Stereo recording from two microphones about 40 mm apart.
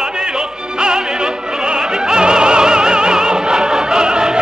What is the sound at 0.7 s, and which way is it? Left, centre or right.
Opera, centre.